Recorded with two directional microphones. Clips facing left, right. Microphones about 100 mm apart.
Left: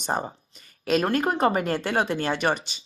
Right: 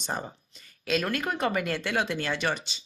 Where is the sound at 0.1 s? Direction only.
35° left (ahead or behind).